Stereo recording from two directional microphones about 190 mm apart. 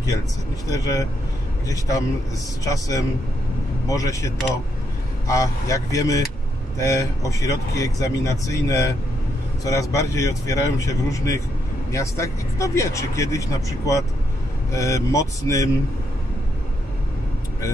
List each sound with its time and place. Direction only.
0.7 s speech: 20° left (ahead or behind)